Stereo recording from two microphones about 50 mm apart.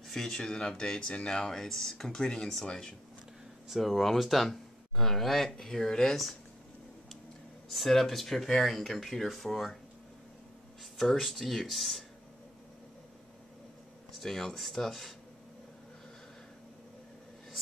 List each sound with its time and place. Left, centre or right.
0.0 s speech: centre
3.6 s speech: centre
7.7 s speech: centre
11.0 s speech: centre
14.2 s speech: centre